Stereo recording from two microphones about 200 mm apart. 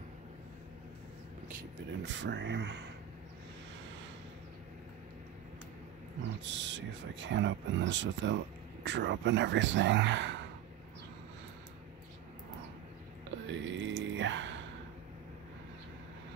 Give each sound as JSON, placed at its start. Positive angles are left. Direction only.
{"t": 2.0, "sound": "speech", "side_deg": -65}
{"t": 6.4, "sound": "speech", "side_deg": -65}
{"t": 13.5, "sound": "mantra", "side_deg": -65}